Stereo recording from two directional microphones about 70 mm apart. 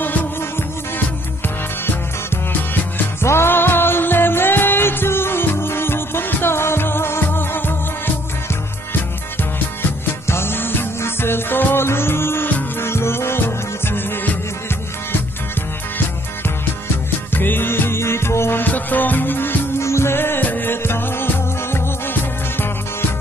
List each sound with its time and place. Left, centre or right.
0.0 s music: left
2.7 s music: left
9.4 s music: left
16.4 s music: left